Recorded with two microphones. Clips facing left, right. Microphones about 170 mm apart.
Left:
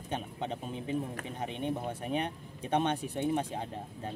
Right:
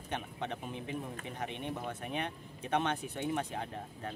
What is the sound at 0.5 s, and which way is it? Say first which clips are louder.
Speech: left 4 dB; 30° left (ahead or behind).